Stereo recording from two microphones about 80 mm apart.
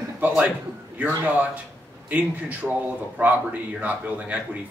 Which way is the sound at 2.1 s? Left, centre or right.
Centre.